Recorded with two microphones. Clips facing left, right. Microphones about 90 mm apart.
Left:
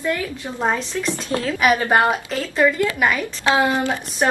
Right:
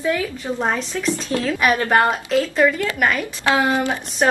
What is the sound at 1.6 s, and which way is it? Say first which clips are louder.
Speech: left 1 dB; 15° left (ahead or behind).